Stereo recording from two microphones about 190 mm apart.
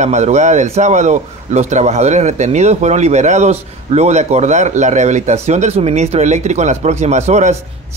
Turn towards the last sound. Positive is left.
turn(degrees=-35)  # may be behind; listen again after turning